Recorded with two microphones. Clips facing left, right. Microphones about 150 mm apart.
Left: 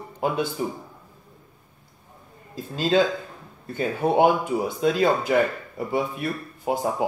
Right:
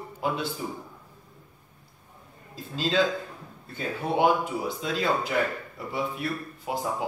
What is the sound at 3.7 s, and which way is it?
Speech, 50° left (ahead or behind).